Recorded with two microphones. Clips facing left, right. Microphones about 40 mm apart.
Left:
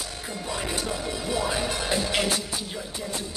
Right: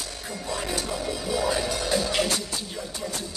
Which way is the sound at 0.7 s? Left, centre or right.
Left.